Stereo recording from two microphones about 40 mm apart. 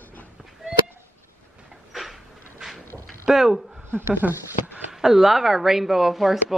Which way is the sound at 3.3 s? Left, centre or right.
Centre.